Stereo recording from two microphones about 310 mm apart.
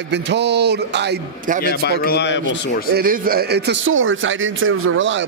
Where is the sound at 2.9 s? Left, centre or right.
Right.